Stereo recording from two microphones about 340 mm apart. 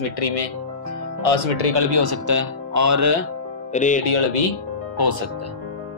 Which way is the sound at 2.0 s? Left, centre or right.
Right.